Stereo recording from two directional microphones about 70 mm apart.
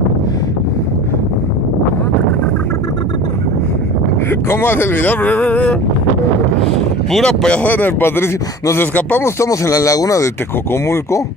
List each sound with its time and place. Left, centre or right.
4.3 s speech: left
7.1 s speech: centre
7.6 s speech: left
9.2 s speech: left
10.7 s speech: left